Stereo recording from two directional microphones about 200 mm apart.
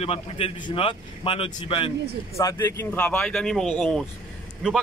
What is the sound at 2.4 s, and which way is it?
Speech, 15° left (ahead or behind).